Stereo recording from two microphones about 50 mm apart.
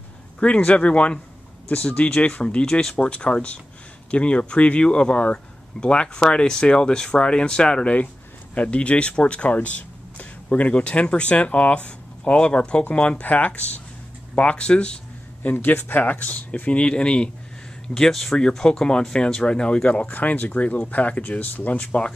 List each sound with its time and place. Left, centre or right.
0.4 s speech: left
15.4 s speech: left; by 17.3 s centre
17.8 s speech: centre
20.1 s speech: left
21.8 s speech: centre